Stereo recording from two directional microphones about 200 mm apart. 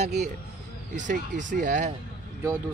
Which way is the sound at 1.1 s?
40° right (ahead or behind).